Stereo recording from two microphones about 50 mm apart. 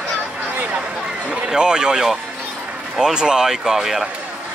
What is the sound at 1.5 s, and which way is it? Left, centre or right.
Speech, centre.